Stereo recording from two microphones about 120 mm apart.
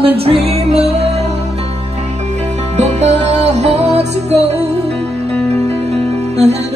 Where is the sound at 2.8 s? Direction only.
70° right (ahead or behind).